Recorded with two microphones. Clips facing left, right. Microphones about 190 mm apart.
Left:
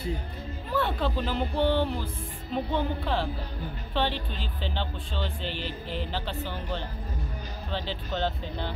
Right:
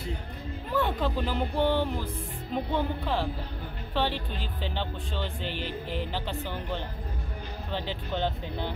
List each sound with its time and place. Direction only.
0.7 s speech: 15° right (ahead or behind)
5.5 s music: 50° right (ahead or behind)
6.1 s speech: 15° right (ahead or behind)